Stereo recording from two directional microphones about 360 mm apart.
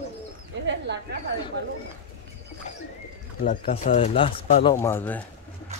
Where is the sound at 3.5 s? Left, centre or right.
Centre.